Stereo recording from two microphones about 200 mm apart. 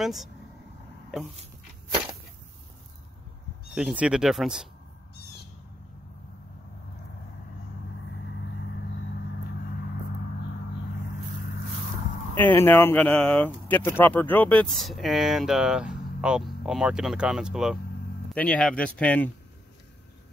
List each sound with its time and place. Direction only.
0.0 s speech: centre (ahead or behind)
3.7 s speech: 5° right (ahead or behind)
12.4 s speech: 10° left (ahead or behind)